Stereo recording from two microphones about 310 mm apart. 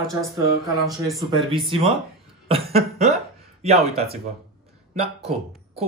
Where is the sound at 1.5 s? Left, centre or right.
Centre.